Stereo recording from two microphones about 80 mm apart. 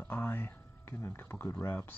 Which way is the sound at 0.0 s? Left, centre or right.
Left.